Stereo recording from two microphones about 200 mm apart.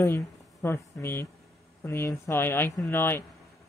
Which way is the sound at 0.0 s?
10° left (ahead or behind).